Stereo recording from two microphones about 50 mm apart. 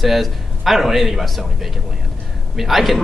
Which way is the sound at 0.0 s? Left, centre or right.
Centre.